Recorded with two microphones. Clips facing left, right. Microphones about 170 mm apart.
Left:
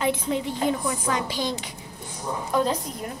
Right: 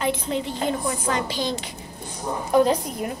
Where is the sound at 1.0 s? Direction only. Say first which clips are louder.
Right 1 dB; 10° left (ahead or behind).